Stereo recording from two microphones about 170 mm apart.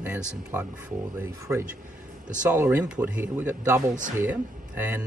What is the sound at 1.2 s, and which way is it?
A man's voice, 15° right (ahead or behind).